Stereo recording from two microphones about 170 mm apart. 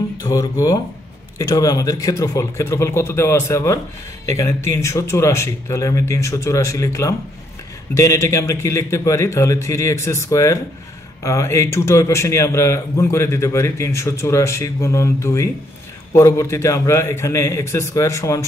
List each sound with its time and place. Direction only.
0.2 s a man's voice: 20° left (ahead or behind)